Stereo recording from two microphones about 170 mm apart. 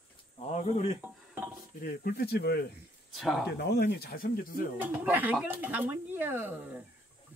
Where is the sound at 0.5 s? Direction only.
40° left (ahead or behind).